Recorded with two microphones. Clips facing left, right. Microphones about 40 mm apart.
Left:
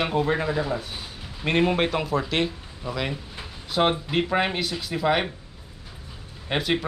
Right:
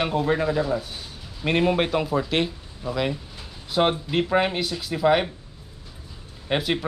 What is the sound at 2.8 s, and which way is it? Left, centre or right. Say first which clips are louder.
Speech: right 3 dB; centre.